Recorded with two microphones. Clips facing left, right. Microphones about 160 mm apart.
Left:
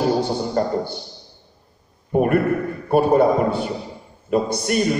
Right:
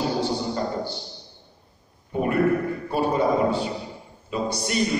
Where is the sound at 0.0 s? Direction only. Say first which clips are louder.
Left 5 dB; 50° left (ahead or behind).